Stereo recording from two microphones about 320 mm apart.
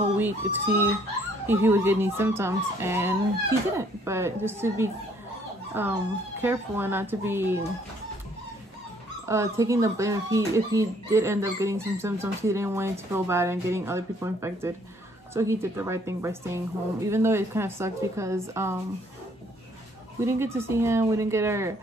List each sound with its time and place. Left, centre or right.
0.0 s speech: centre
9.3 s speech: centre
20.2 s speech: centre